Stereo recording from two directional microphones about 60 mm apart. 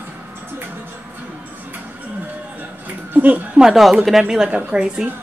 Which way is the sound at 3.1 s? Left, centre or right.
Right.